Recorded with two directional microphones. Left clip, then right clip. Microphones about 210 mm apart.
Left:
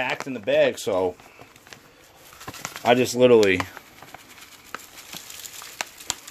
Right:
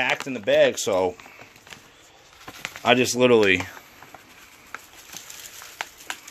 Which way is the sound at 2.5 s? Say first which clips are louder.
Even; 10° left (ahead or behind).